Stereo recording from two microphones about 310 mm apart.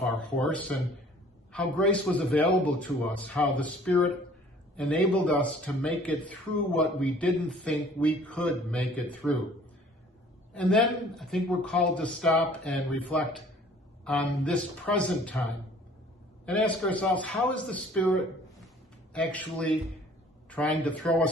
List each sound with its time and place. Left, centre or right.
0.0 s a man's voice: centre
10.5 s a man's voice: centre
16.4 s a man's voice: centre